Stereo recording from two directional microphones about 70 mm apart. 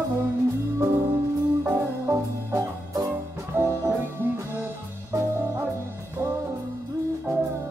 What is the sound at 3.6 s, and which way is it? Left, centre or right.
Music, right.